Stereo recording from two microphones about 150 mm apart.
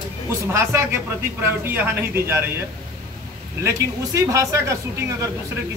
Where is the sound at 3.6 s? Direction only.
20° right (ahead or behind).